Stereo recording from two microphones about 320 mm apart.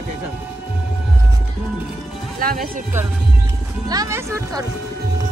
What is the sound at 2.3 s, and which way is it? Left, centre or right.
Speech, right.